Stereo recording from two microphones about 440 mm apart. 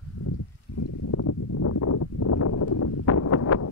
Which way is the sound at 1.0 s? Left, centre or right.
Left.